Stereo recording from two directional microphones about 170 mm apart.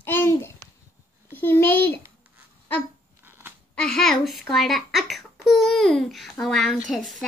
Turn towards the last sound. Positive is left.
turn(degrees=0)  # may be behind; listen again after turning